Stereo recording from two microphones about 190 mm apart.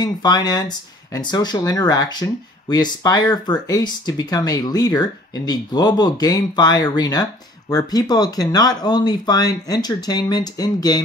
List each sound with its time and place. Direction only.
0.0 s speech: 20° left (ahead or behind)